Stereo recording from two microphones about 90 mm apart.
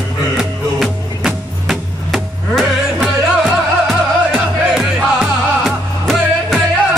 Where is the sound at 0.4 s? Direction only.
5° right (ahead or behind).